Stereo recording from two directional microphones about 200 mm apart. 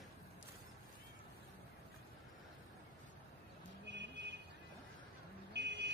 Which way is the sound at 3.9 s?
60° right (ahead or behind).